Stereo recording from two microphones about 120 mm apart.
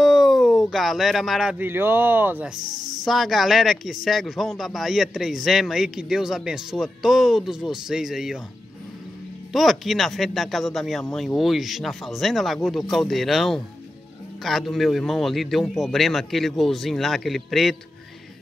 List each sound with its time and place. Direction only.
0.0 s a sound: centre (ahead or behind)
1.6 s speech: 20° right (ahead or behind)
2.6 s speech: 35° right (ahead or behind)
3.1 s a man's voice: centre (ahead or behind)
9.5 s a man's voice: centre (ahead or behind)